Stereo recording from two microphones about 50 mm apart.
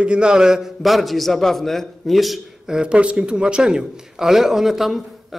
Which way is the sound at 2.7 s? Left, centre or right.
Centre.